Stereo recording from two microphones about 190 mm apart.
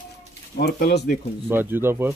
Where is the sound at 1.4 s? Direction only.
10° right (ahead or behind).